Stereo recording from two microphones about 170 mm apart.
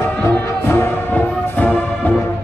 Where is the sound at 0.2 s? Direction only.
15° left (ahead or behind).